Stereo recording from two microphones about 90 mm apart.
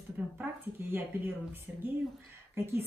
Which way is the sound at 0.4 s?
20° right (ahead or behind).